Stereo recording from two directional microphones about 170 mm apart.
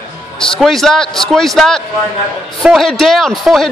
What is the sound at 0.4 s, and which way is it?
A man's voice, 5° left (ahead or behind).